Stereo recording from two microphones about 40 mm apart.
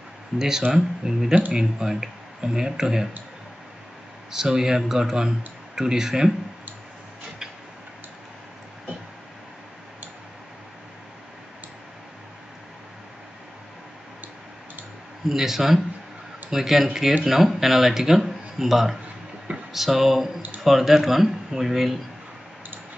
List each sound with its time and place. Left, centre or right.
0.4 s speech: centre
4.3 s speech: centre
15.2 s speech: centre